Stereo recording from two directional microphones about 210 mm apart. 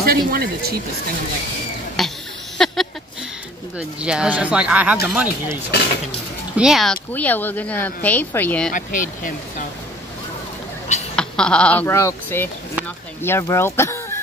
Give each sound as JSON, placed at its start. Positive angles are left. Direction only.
{"t": 0.0, "sound": "speech", "side_deg": -45}
{"t": 2.0, "sound": "a sound", "side_deg": 0}
{"t": 3.7, "sound": "speech", "side_deg": -5}
{"t": 8.7, "sound": "speech", "side_deg": 40}
{"t": 11.1, "sound": "speech", "side_deg": 5}